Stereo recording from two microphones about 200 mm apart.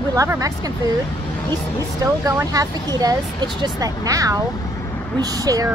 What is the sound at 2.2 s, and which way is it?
Speech, 15° right (ahead or behind).